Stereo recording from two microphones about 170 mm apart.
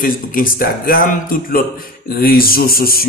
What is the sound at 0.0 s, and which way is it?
A man's voice, 55° left (ahead or behind).